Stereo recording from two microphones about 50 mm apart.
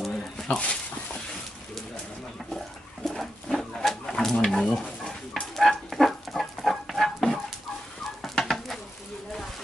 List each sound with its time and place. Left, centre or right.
0.0 s a sound: centre
0.6 s dog: left
3.1 s dog: centre
4.1 s stir: centre
8.2 s chicken: centre